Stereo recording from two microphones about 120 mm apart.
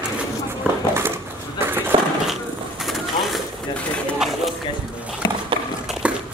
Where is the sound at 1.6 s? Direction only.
15° right (ahead or behind).